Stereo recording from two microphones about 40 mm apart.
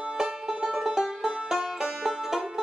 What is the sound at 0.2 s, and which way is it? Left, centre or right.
Music, centre.